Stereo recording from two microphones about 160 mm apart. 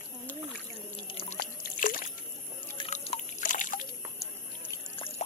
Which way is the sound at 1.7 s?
55° left (ahead or behind).